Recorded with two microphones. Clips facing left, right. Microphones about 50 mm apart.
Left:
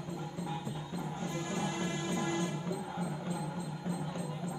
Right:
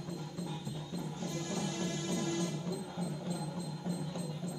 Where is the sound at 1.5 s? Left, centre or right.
Left.